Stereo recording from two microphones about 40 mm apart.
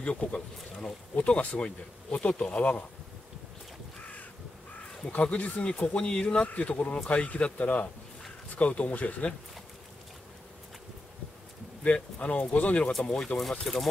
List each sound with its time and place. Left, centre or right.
0.0 s speech: left
5.2 s speech: left
11.8 s speech: left
13.0 s speech: centre